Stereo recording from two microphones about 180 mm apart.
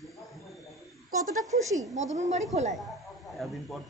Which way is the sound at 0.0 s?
Centre (ahead or behind).